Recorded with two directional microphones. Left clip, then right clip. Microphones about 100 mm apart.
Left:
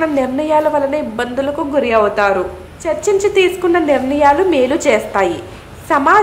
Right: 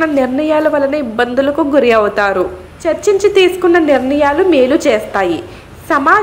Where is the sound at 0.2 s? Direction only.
20° right (ahead or behind); by 2.4 s 40° right (ahead or behind).